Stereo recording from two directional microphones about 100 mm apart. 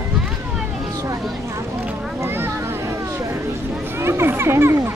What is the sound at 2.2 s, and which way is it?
Vehicle, 25° right (ahead or behind).